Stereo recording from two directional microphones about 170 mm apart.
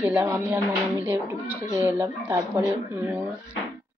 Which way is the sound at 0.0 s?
10° right (ahead or behind).